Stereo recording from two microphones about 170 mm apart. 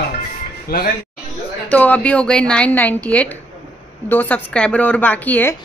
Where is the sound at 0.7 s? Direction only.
65° left (ahead or behind).